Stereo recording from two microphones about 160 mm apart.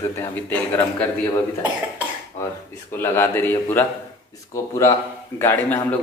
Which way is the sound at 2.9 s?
15° left (ahead or behind).